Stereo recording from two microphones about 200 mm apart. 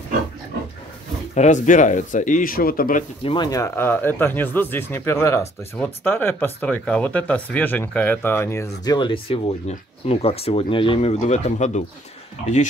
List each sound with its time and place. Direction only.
1.3 s speech: 35° left (ahead or behind)
3.3 s speech: 20° left (ahead or behind)